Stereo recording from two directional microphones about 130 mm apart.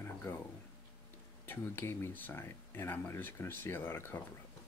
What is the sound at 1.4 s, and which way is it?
Speech, 15° left (ahead or behind).